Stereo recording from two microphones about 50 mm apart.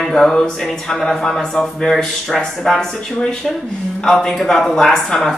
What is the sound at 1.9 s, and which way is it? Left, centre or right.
A man's voice, centre.